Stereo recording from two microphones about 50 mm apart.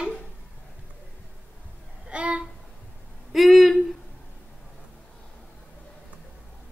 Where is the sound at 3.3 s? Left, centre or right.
Centre.